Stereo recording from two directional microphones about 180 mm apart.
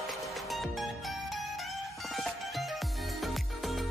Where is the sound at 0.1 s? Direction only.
Centre (ahead or behind).